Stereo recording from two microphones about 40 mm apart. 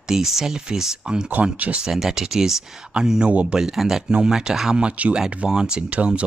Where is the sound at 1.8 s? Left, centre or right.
Centre; by 3.6 s right.